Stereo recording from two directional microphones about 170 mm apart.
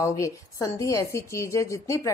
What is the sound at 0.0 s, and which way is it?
A woman's voice, 20° left (ahead or behind).